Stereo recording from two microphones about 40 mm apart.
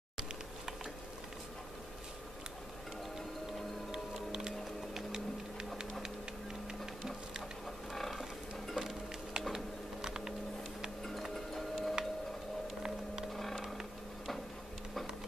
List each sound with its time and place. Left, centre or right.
3.9 s music: centre
7.9 s music: centre
10.0 s a sound: centre
11.5 s music: centre
12.6 s a sound: centre
13.3 s vehicle: centre